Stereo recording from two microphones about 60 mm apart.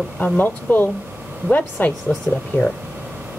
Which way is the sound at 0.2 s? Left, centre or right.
Left.